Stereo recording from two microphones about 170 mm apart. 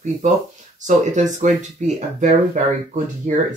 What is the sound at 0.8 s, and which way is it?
Speech, 45° right (ahead or behind).